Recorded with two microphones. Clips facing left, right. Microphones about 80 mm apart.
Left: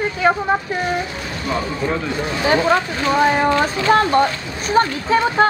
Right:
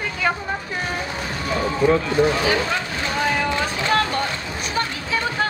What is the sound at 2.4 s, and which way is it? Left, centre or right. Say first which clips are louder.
Speech: left 6 dB; left.